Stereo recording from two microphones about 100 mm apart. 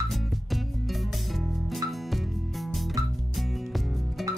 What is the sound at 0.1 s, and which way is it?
Music, centre (ahead or behind).